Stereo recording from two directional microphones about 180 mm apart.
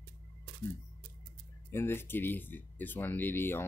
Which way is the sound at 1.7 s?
15° left (ahead or behind).